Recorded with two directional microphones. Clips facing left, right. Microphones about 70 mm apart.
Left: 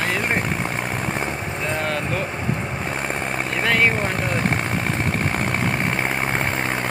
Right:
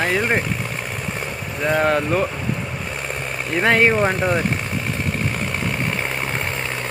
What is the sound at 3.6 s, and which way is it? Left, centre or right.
Speech, right.